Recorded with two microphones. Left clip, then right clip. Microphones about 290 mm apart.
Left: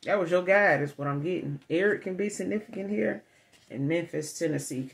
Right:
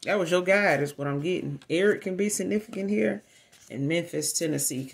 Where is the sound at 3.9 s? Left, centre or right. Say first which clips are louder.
Right 2 dB; right.